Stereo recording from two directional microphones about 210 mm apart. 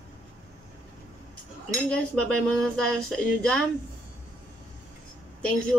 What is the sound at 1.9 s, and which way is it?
Speech, 5° left (ahead or behind).